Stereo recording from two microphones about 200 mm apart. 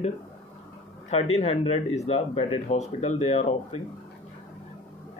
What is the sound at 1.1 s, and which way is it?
Speech, 35° left (ahead or behind).